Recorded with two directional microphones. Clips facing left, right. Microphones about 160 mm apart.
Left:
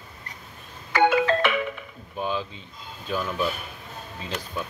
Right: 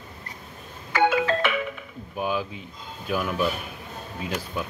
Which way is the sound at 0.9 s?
60° left (ahead or behind).